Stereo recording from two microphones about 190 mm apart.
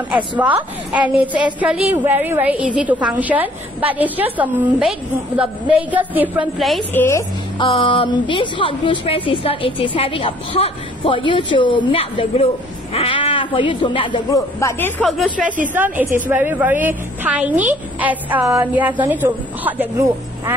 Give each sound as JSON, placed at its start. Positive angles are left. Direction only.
{"t": 0.4, "sound": "a woman's voice", "side_deg": -10}
{"t": 6.9, "sound": "a woman's voice", "side_deg": 15}
{"t": 7.6, "sound": "a woman's voice", "side_deg": 25}
{"t": 15.7, "sound": "a woman's voice", "side_deg": -10}